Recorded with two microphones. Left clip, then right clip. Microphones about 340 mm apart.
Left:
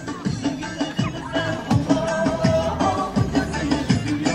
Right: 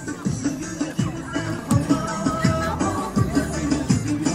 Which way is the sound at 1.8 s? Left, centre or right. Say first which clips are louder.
Left 5 dB; left.